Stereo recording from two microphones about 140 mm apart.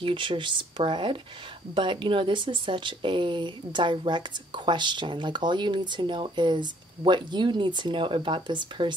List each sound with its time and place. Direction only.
0.0 s speech: 35° right (ahead or behind)